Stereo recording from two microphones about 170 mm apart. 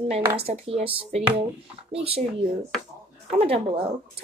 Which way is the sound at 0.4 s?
35° right (ahead or behind).